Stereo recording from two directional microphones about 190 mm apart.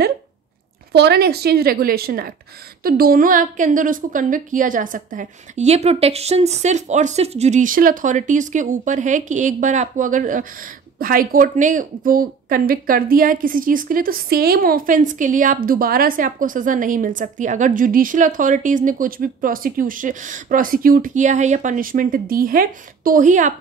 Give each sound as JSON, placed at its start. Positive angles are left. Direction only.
{"t": 0.9, "sound": "a woman's voice", "side_deg": -55}